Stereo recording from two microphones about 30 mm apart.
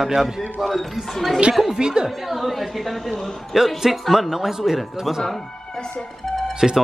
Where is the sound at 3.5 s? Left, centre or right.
Centre.